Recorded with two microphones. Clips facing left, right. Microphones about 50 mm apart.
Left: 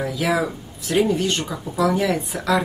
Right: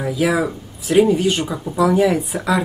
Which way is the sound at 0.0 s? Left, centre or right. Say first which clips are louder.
Right 3 dB; centre.